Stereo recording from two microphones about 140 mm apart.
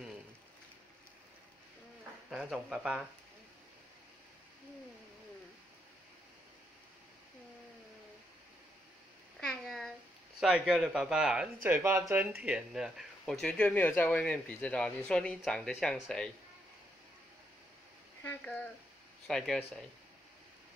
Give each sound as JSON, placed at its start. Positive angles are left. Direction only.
{"t": 2.3, "sound": "speech", "side_deg": -5}
{"t": 9.4, "sound": "a sound", "side_deg": 5}
{"t": 10.4, "sound": "speech", "side_deg": 0}
{"t": 11.7, "sound": "speech", "side_deg": -20}
{"t": 12.4, "sound": "speech", "side_deg": -5}
{"t": 18.4, "sound": "speech", "side_deg": 10}